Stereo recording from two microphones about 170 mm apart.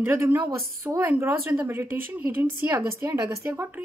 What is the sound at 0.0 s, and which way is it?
A child's voice, 15° right (ahead or behind).